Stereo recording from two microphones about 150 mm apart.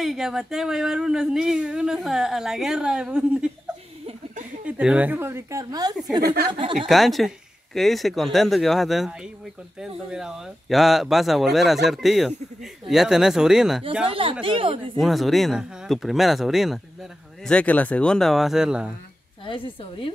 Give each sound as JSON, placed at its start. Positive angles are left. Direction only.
{"t": 0.0, "sound": "speech", "side_deg": 0}
{"t": 4.6, "sound": "speech", "side_deg": -10}
{"t": 6.2, "sound": "speech", "side_deg": -90}
{"t": 6.9, "sound": "speech", "side_deg": 0}
{"t": 14.0, "sound": "speech", "side_deg": -35}
{"t": 15.0, "sound": "speech", "side_deg": 0}
{"t": 19.4, "sound": "a woman's voice", "side_deg": 35}